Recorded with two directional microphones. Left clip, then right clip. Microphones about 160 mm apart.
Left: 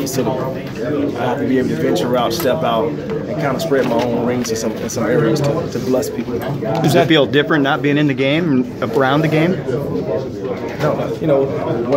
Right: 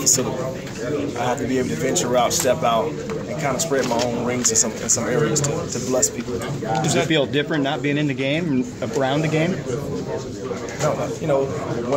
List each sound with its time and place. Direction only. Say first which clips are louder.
1.2 s speech: left 4 dB; 5° right (ahead or behind)
6.7 s speech: left 7 dB; 60° left (ahead or behind)
7.1 s speech: left 7 dB; 5° left (ahead or behind)